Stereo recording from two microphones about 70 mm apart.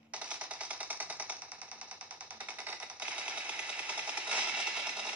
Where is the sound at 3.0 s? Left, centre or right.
Centre.